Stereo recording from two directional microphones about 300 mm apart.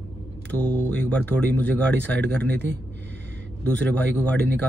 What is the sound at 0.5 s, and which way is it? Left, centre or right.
A man's voice, centre.